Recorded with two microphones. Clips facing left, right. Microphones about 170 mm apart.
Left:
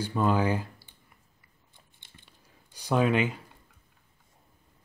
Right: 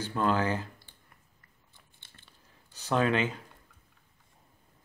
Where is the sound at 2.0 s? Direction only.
15° left (ahead or behind).